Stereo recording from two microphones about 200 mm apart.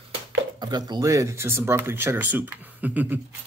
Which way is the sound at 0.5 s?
20° right (ahead or behind).